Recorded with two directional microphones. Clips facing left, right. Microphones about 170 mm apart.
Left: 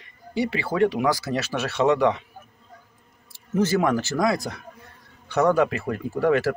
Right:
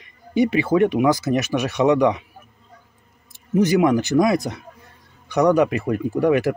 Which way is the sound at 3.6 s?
15° right (ahead or behind).